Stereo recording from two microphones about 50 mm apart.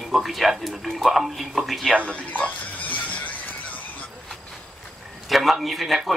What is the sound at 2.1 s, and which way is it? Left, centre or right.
Music, left.